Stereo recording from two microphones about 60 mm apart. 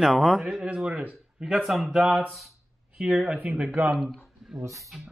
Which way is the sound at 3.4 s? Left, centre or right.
Right.